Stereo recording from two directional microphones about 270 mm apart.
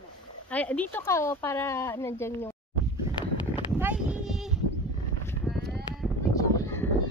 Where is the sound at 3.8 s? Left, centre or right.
Centre.